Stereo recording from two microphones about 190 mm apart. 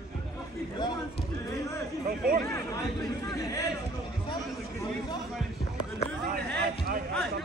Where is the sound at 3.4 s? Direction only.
15° left (ahead or behind).